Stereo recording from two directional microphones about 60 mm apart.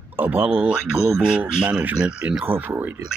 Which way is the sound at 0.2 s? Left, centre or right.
Right.